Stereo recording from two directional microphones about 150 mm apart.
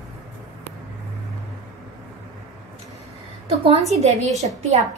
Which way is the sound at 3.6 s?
45° right (ahead or behind).